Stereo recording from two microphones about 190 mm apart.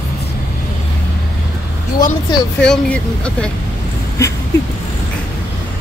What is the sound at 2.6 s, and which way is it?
Speech, 5° left (ahead or behind).